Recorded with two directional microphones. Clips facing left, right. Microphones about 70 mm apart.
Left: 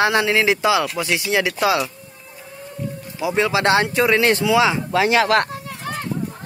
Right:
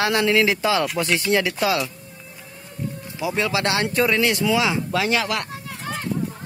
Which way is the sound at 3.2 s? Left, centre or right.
Left.